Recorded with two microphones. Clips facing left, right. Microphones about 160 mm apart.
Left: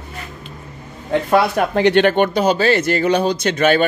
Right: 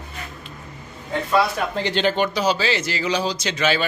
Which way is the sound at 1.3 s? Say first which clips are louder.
Left 4 dB; 60° left (ahead or behind).